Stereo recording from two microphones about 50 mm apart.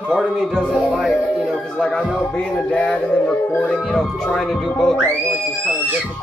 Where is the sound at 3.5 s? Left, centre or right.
Centre.